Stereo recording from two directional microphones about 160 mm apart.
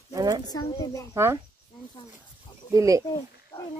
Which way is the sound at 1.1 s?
15° right (ahead or behind).